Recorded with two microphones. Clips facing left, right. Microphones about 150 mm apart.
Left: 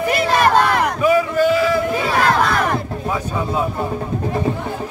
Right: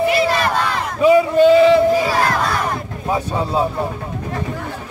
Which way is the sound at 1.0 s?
25° right (ahead or behind).